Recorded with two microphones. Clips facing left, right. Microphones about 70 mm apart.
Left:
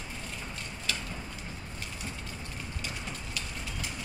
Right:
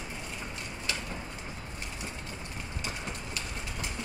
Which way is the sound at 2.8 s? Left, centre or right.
Right.